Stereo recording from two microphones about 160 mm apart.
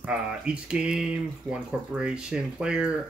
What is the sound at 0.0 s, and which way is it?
Speech, 5° right (ahead or behind).